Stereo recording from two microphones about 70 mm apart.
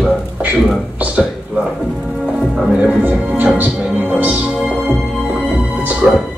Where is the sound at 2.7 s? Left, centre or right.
Right.